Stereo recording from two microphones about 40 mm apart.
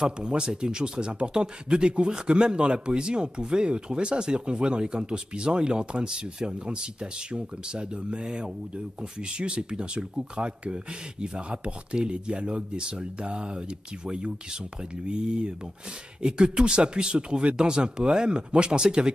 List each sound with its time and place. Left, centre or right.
0.0 s speech: right